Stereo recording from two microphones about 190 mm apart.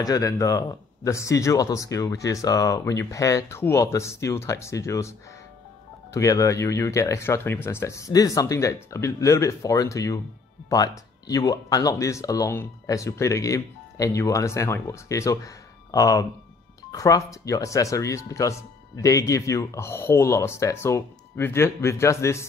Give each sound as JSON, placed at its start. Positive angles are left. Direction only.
{"t": 0.0, "sound": "speech", "side_deg": 20}
{"t": 6.1, "sound": "speech", "side_deg": 15}